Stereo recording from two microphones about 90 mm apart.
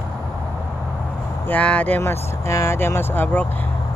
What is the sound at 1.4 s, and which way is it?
Speech, 15° left (ahead or behind).